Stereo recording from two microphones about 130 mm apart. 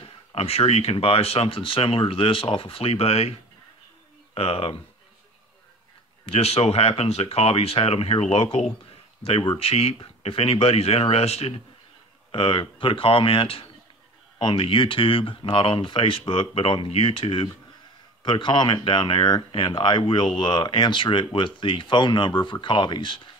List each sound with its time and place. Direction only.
0.0 s speech: 50° left (ahead or behind)
6.2 s speech: 50° left (ahead or behind)
12.3 s speech: 40° left (ahead or behind)